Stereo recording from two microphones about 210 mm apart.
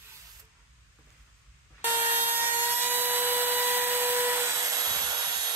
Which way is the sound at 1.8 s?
10° right (ahead or behind).